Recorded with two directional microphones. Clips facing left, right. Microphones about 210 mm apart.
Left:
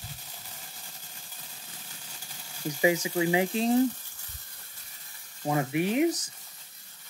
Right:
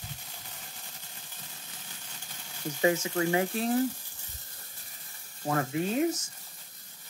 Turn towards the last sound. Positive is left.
turn(degrees=15)  # may be behind; listen again after turning